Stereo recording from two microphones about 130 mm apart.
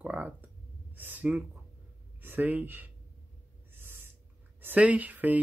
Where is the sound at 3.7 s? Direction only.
15° right (ahead or behind).